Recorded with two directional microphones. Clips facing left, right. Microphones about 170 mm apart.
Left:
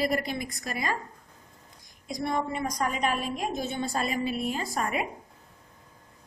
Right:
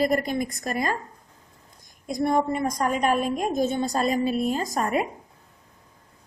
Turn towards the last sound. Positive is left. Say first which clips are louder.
# right 5 dB
turn(degrees=-40)  # may be behind; listen again after turning